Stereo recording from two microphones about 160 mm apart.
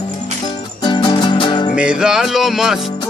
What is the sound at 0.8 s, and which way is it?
Music, 30° left (ahead or behind).